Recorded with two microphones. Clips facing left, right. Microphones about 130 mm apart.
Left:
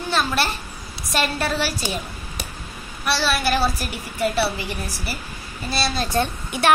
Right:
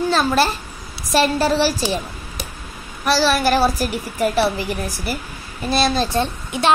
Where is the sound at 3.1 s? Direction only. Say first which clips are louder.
Right 5 dB; 40° right (ahead or behind).